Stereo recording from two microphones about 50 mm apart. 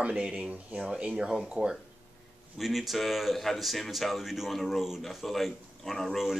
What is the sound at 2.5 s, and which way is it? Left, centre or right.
A man's voice, centre.